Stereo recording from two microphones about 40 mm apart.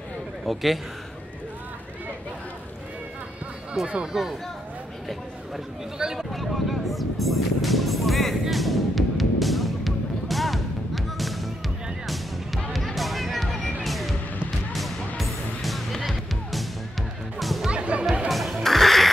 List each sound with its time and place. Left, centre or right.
0.5 s a man's voice: centre
3.8 s a man's voice: centre
5.9 s speech: centre
6.3 s music: centre
12.7 s music: centre
17.4 s music: centre
17.6 s music: right
18.3 s music: centre